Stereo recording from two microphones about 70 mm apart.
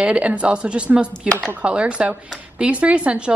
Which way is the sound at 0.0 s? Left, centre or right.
Centre.